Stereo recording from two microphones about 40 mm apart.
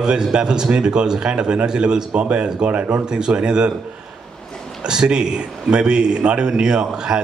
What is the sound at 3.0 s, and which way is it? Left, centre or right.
Speech, right.